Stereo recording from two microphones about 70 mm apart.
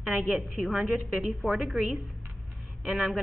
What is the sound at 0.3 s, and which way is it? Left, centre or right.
A woman's voice, centre.